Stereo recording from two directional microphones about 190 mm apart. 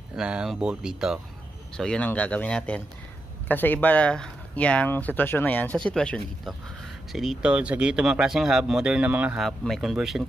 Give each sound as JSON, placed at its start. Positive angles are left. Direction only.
{"t": 0.1, "sound": "speech", "side_deg": -5}